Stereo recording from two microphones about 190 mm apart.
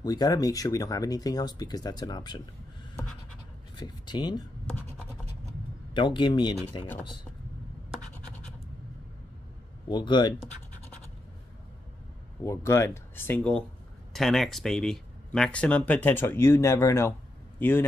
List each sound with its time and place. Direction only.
0.0 s speech: 20° left (ahead or behind)
3.7 s speech: 25° left (ahead or behind)
5.9 s speech: 25° left (ahead or behind)
9.8 s speech: 25° left (ahead or behind)
12.4 s a man's voice: 15° left (ahead or behind)